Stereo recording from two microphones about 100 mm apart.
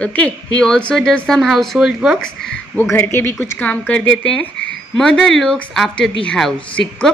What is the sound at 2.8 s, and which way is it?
A woman's voice, 25° left (ahead or behind).